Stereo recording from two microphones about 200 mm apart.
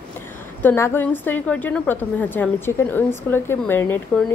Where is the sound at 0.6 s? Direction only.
10° left (ahead or behind).